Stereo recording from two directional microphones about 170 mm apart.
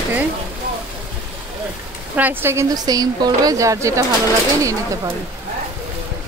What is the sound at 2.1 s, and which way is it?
A woman's voice, 10° right (ahead or behind).